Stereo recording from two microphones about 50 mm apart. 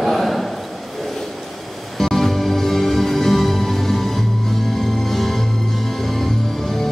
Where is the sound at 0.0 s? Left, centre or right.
Centre.